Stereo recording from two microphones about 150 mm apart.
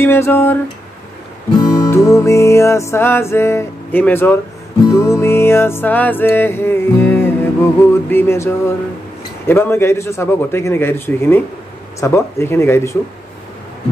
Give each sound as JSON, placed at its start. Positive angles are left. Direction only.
{"t": 0.0, "sound": "music", "side_deg": 15}
{"t": 1.6, "sound": "music", "side_deg": 20}